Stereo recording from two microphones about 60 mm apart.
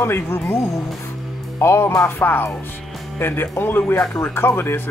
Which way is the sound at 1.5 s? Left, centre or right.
Left.